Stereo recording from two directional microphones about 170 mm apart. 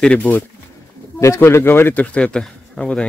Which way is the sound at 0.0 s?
5° left (ahead or behind).